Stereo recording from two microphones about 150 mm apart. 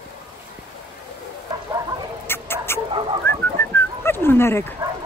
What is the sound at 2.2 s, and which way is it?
Rodents, 15° left (ahead or behind).